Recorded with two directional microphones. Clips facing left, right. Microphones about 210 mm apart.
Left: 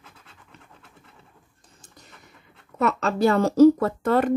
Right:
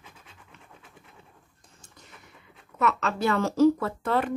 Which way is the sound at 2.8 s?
40° left (ahead or behind).